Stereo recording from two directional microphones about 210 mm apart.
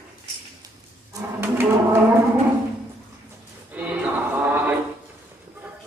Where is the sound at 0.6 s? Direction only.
15° right (ahead or behind).